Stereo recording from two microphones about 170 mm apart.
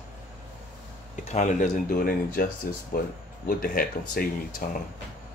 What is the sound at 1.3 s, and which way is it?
Speech, 45° left (ahead or behind).